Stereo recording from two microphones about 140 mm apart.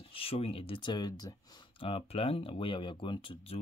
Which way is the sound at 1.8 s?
40° left (ahead or behind).